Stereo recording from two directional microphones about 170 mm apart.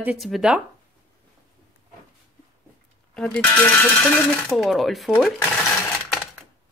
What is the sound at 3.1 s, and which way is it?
Coin, 5° left (ahead or behind).